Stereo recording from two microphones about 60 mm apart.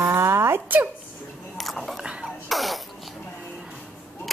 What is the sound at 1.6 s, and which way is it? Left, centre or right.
Biting, centre.